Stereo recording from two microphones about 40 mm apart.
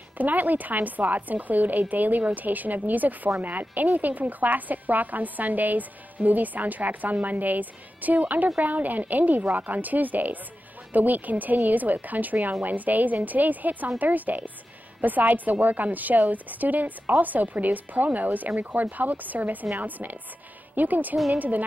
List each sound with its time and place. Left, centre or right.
0.2 s a woman's voice: right